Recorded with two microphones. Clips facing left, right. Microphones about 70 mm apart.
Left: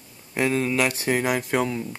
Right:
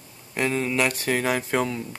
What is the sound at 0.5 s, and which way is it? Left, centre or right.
Speech, centre.